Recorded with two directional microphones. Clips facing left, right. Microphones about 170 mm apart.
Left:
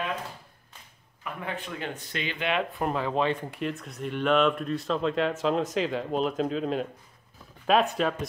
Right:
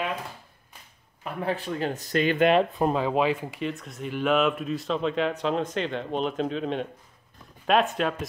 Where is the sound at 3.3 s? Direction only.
5° right (ahead or behind).